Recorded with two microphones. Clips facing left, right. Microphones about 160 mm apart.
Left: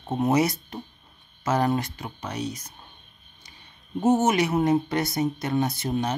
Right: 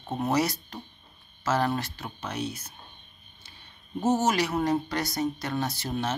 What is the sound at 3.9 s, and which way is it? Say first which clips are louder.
Speech: left 4 dB; 20° left (ahead or behind).